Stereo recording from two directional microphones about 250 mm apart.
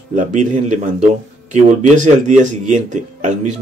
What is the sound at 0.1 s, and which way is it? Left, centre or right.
Speech, right.